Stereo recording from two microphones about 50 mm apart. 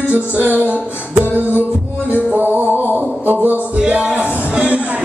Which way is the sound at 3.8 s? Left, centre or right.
Right.